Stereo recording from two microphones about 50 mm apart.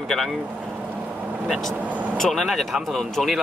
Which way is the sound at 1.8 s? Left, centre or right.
Right.